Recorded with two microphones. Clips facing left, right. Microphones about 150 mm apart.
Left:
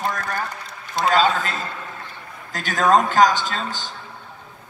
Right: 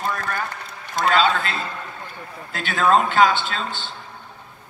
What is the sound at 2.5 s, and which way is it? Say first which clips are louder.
A man's voice: left 1 dB; 40° left (ahead or behind).